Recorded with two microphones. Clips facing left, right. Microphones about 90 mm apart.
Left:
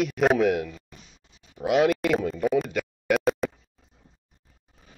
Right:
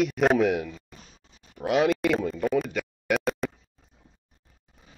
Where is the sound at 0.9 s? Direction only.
40° right (ahead or behind).